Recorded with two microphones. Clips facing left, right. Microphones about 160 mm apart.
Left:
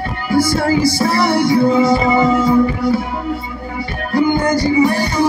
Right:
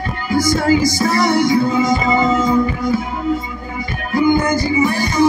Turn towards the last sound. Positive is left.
turn(degrees=35)  # may be behind; listen again after turning